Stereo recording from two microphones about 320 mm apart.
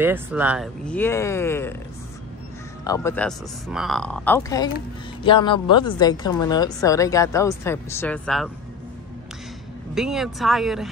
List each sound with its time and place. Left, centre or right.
0.0 s a woman's voice: centre
2.8 s a woman's voice: centre
9.9 s speech: centre